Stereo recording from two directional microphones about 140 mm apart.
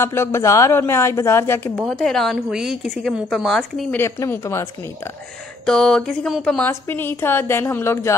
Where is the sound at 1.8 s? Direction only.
5° left (ahead or behind).